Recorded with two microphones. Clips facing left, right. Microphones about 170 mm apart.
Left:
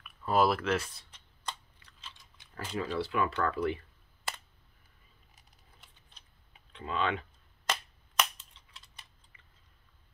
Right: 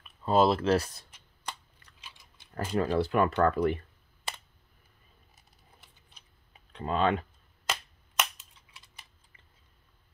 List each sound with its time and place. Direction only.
0.0 s speech: 25° right (ahead or behind)
2.5 s speech: 50° right (ahead or behind)
6.7 s speech: 40° right (ahead or behind)
7.6 s a sound: 5° right (ahead or behind)